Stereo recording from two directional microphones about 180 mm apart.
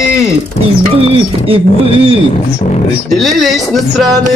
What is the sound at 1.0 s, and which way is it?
Speech, 30° right (ahead or behind).